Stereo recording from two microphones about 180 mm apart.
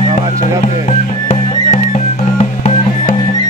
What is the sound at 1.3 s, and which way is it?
Music, 40° left (ahead or behind).